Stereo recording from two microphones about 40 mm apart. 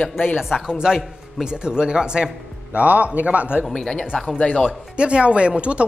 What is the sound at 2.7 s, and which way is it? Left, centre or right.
Speech, right.